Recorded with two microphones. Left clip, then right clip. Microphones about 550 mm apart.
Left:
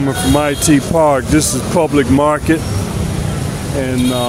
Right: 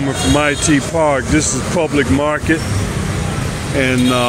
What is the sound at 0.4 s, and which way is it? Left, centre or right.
Speech, left.